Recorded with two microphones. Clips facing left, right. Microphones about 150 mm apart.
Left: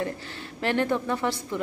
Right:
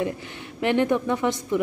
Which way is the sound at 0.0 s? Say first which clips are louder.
Right 3 dB; 20° right (ahead or behind).